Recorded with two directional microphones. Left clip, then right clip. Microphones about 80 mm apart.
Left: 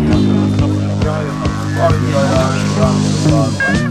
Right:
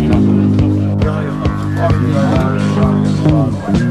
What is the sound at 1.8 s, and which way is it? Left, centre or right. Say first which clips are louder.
Music: left 2 dB; right.